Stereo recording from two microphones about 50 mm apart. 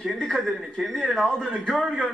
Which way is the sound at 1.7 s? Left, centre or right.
Centre.